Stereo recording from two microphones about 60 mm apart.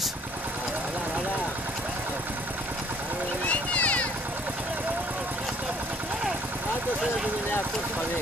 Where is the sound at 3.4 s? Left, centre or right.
Left.